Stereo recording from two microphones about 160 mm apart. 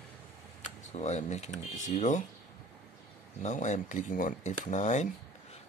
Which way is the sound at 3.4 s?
50° left (ahead or behind).